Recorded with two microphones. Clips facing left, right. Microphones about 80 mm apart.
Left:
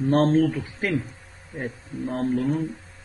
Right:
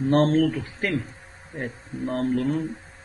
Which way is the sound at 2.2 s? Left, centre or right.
Centre.